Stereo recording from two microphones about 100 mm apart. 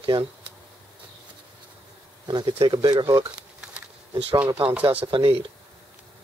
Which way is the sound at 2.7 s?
50° right (ahead or behind).